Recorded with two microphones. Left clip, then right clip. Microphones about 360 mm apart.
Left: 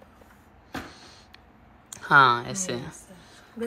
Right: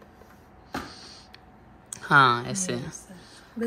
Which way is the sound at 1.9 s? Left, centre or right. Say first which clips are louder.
Left 1 dB; centre.